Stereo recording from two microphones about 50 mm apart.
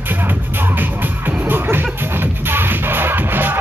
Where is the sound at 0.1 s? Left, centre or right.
Right.